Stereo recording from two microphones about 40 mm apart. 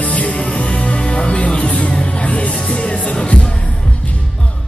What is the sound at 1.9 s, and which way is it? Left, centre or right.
Music, left.